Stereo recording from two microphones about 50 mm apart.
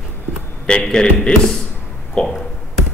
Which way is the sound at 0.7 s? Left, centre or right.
Centre.